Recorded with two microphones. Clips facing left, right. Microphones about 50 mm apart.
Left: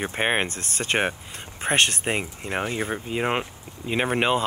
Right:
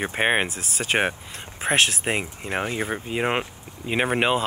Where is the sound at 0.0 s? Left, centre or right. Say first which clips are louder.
Right 2 dB; centre.